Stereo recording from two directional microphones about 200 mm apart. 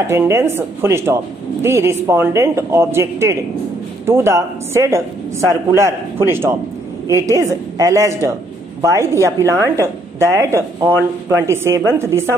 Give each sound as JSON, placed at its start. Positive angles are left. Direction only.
{"t": 0.0, "sound": "a woman's voice", "side_deg": -15}